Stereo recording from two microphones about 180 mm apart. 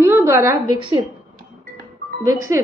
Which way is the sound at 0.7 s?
30° right (ahead or behind).